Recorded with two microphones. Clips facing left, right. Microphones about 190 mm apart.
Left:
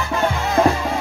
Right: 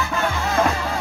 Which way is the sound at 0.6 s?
35° left (ahead or behind).